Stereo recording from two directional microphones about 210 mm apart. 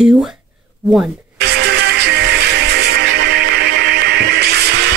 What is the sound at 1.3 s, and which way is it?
Music, 55° right (ahead or behind).